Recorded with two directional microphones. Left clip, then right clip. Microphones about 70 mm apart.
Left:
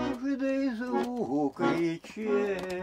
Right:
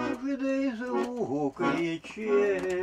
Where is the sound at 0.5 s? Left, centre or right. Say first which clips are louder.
Right 2 dB; right.